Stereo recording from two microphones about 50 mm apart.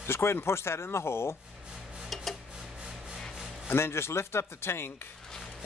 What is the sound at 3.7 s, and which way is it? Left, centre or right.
Speech, left.